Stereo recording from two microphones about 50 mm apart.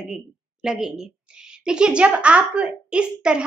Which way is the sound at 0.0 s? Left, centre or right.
Centre.